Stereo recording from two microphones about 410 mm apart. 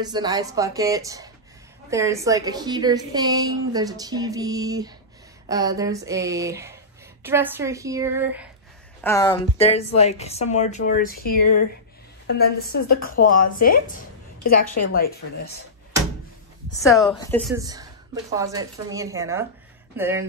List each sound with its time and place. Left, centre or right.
0.0 s a woman's voice: centre
9.0 s speech: centre
14.7 s a woman's voice: left
15.0 s speech: left
16.8 s a woman's voice: centre